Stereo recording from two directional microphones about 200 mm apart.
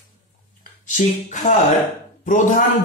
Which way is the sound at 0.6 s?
40° left (ahead or behind).